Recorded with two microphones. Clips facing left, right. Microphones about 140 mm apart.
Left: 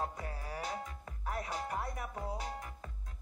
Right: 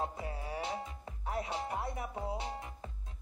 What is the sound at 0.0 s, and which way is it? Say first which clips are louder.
Music: right 2 dB; 25° right (ahead or behind).